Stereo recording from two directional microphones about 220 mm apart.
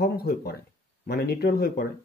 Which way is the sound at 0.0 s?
45° left (ahead or behind).